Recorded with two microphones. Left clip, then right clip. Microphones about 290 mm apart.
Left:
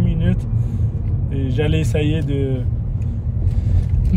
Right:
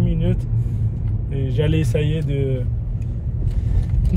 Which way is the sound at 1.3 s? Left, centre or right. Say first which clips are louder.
Left 1 dB; centre.